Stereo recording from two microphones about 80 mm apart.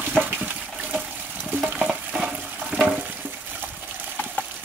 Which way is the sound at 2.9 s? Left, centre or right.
Centre.